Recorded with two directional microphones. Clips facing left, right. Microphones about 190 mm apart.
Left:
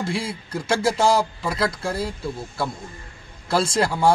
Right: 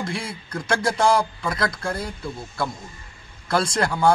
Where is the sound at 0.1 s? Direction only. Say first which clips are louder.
Left 3 dB; 25° left (ahead or behind).